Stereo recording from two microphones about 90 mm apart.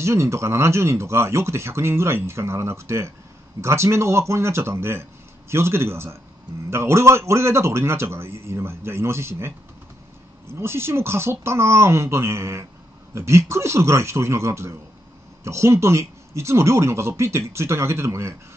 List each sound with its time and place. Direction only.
0.0 s speech: 30° right (ahead or behind)
10.5 s speech: 30° right (ahead or behind)